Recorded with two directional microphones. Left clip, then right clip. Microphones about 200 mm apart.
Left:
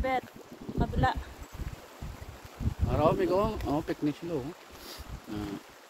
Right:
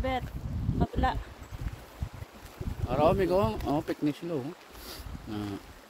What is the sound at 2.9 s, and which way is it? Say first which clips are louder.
Speech: right 1 dB; 45° right (ahead or behind).